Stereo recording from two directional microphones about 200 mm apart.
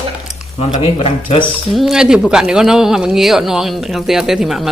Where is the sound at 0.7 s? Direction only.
30° left (ahead or behind).